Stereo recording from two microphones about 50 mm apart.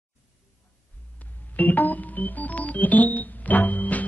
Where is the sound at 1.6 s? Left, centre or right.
Left.